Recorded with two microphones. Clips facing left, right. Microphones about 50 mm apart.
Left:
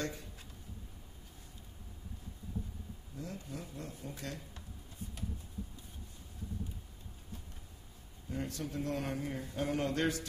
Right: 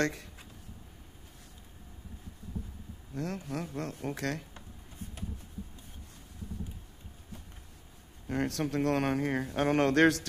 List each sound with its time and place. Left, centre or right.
0.0 s speech: right
3.1 s a man's voice: right
8.3 s a man's voice: right